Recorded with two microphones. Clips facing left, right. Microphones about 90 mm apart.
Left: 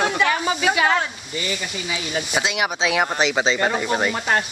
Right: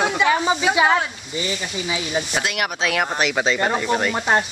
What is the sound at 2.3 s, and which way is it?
Speech, centre (ahead or behind).